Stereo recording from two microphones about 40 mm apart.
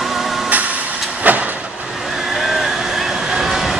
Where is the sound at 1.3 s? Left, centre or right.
Right.